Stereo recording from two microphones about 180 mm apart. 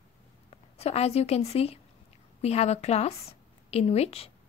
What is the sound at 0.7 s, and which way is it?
A woman's voice, 35° left (ahead or behind).